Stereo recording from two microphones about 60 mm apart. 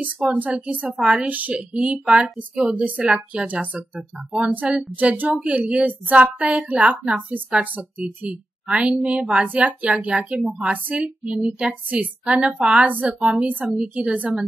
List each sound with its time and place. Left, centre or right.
0.0 s a woman's voice: right